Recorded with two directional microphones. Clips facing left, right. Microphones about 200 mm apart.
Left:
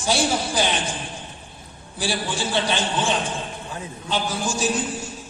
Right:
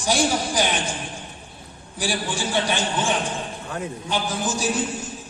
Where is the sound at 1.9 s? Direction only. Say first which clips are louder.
Even; 15° right (ahead or behind).